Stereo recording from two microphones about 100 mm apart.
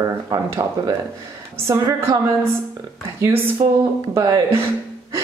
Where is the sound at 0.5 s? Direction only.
35° right (ahead or behind).